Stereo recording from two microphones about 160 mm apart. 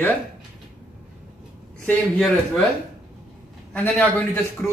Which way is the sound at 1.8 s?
5° left (ahead or behind).